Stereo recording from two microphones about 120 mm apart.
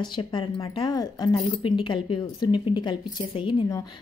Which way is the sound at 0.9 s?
35° left (ahead or behind).